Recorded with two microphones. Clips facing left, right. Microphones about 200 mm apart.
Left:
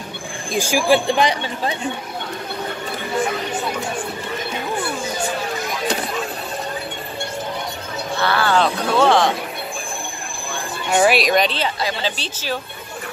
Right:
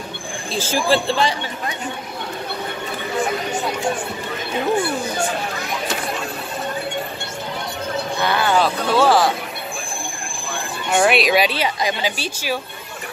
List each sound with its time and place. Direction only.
0.5 s speech: 15° left (ahead or behind)
8.2 s a woman's voice: 15° right (ahead or behind)
8.6 s speech: centre (ahead or behind)
10.9 s a woman's voice: centre (ahead or behind)